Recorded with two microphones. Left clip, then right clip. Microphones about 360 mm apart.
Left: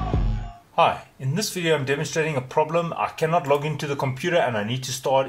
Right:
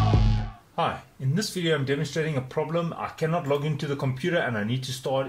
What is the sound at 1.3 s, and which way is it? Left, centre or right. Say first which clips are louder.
Speech: left 4 dB; left.